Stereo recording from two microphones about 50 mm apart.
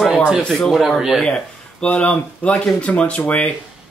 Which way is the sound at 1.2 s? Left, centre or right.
Centre.